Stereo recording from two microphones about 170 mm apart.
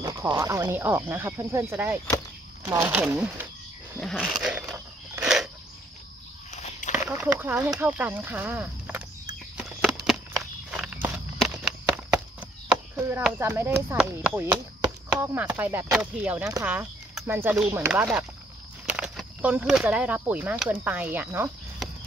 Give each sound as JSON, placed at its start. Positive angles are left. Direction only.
{"t": 0.0, "sound": "speech", "side_deg": -20}
{"t": 4.0, "sound": "a sound", "side_deg": 0}
{"t": 6.5, "sound": "walk", "side_deg": 45}
{"t": 6.9, "sound": "speech", "side_deg": -15}
{"t": 10.0, "sound": "a sound", "side_deg": 0}
{"t": 12.9, "sound": "speech", "side_deg": -10}